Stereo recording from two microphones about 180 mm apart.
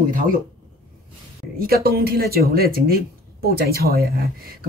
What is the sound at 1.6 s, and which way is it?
Speech, 55° right (ahead or behind).